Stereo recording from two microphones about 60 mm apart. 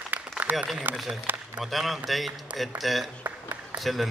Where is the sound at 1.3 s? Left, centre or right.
Right.